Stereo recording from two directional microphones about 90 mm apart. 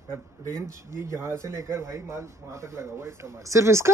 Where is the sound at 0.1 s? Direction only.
30° right (ahead or behind).